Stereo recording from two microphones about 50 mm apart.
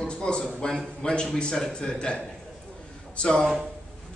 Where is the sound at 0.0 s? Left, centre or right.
Centre.